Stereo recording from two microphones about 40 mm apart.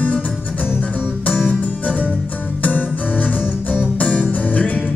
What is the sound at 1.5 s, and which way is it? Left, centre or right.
Music, left.